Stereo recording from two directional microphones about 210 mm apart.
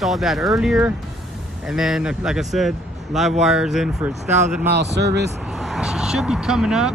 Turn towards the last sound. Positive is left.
turn(degrees=-5)  # may be behind; listen again after turning